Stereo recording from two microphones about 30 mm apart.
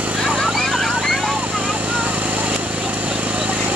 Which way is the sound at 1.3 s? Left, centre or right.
Right.